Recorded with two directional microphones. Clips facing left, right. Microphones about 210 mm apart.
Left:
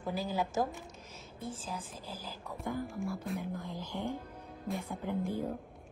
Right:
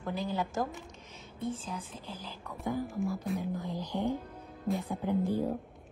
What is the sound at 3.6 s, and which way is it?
Speech, 15° right (ahead or behind).